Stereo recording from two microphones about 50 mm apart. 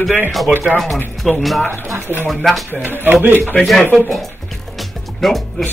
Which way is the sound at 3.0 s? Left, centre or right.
Right.